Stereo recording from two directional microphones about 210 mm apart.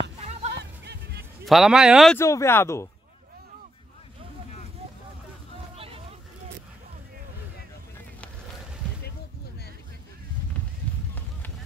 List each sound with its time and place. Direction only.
0.2 s a sound: 30° right (ahead or behind)
0.6 s music: 55° right (ahead or behind)
1.4 s speech: centre (ahead or behind)
2.1 s speech: 15° left (ahead or behind)
5.8 s hubbub: 25° right (ahead or behind)